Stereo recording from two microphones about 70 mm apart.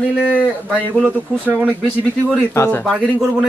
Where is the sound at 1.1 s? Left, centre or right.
Right.